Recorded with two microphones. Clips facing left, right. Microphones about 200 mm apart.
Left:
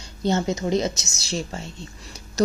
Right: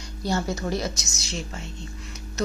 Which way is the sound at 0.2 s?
20° left (ahead or behind).